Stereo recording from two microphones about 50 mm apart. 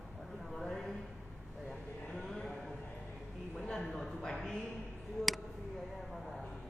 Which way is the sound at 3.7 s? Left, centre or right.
Centre.